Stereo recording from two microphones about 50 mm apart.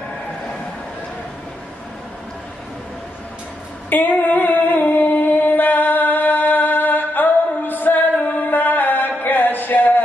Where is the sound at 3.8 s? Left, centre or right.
Left.